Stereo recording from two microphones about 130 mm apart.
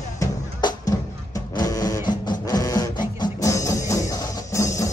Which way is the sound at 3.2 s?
25° left (ahead or behind).